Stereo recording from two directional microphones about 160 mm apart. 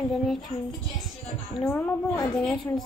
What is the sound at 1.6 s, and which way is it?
Speech, 15° left (ahead or behind).